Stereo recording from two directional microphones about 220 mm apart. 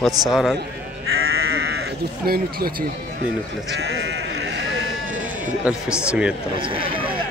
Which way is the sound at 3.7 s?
50° right (ahead or behind).